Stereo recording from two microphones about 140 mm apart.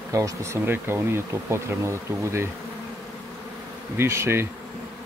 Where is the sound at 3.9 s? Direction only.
20° right (ahead or behind).